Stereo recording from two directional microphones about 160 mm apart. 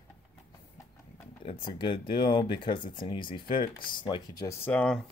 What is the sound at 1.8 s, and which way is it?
Speech, 30° left (ahead or behind).